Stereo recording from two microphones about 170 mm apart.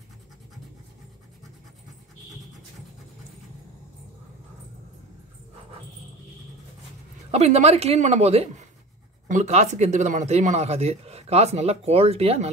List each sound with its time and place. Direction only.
7.2 s speech: 40° right (ahead or behind)